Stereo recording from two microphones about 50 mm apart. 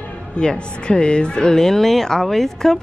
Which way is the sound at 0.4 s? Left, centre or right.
Centre.